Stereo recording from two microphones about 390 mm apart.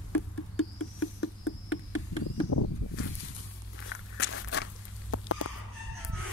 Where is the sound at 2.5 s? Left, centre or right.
Left.